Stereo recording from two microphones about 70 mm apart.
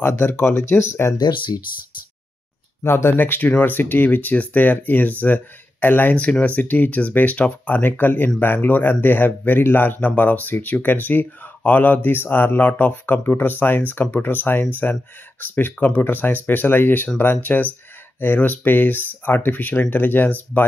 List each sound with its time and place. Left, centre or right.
0.0 s speech: left
1.1 s speech: left
2.8 s speech: left